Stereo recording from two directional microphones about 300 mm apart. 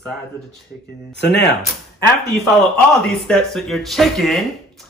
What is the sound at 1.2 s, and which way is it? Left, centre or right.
Speech, left.